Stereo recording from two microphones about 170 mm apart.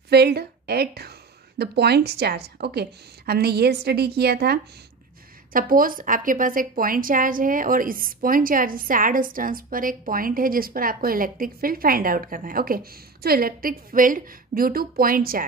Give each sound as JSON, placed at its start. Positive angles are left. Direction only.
{"t": 0.1, "sound": "a woman's voice", "side_deg": -70}
{"t": 5.5, "sound": "a woman's voice", "side_deg": -55}